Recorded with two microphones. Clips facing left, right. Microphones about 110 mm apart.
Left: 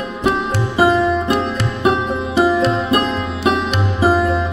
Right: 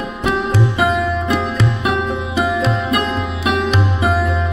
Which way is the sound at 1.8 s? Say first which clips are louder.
Left 7 dB; 30° left (ahead or behind).